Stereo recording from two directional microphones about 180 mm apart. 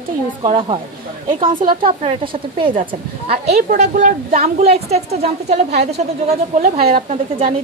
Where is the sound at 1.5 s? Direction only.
50° right (ahead or behind).